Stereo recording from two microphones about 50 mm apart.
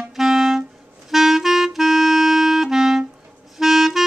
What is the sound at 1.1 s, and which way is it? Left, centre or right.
Clarinet, centre.